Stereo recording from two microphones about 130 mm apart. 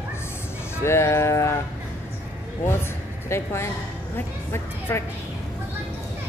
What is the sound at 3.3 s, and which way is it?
A woman's voice, 20° left (ahead or behind).